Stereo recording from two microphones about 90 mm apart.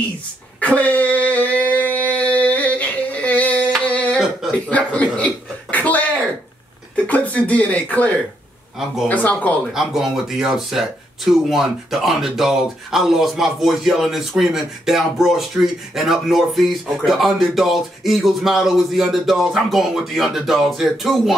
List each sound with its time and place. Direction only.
0.6 s a sound: 15° left (ahead or behind)
4.6 s speech: 15° left (ahead or behind)
5.1 s cough: 15° left (ahead or behind)
7.1 s speech: 15° left (ahead or behind)
9.1 s speech: 15° left (ahead or behind)
9.8 s speech: 5° right (ahead or behind)